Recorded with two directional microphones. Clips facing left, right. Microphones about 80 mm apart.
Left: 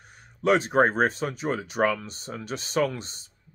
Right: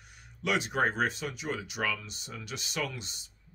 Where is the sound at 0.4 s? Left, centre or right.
Left.